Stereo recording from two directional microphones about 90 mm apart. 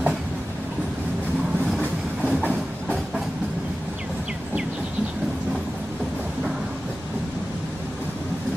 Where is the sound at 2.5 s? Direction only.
10° right (ahead or behind).